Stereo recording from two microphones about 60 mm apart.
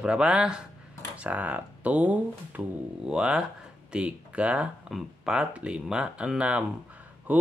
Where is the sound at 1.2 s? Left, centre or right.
Right.